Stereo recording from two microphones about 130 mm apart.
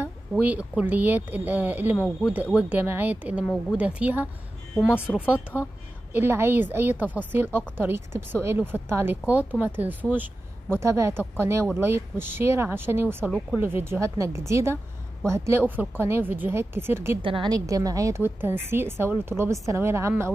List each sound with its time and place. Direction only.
0.0 s a woman's voice: 10° right (ahead or behind)
6.1 s a woman's voice: 15° right (ahead or behind)
17.2 s a woman's voice: 40° right (ahead or behind); by 20.3 s 20° right (ahead or behind)